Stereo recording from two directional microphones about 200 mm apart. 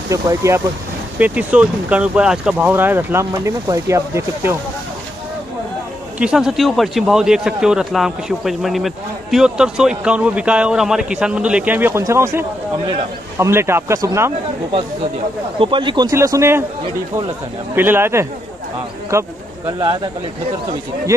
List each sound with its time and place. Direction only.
0.1 s speech: 15° right (ahead or behind)
6.1 s speech: 5° right (ahead or behind)
15.6 s speech: 25° right (ahead or behind)
17.7 s speech: 10° right (ahead or behind)